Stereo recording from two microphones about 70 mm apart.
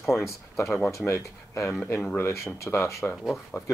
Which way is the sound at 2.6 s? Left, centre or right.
Left.